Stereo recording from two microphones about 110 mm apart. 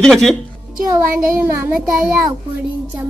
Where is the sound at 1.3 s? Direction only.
25° right (ahead or behind).